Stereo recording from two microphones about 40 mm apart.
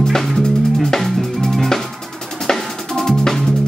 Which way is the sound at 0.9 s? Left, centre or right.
Centre.